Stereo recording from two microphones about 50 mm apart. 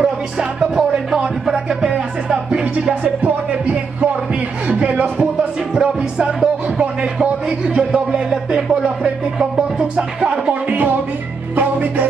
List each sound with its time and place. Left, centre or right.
0.0 s music: right
2.2 s music: right
10.5 s music: right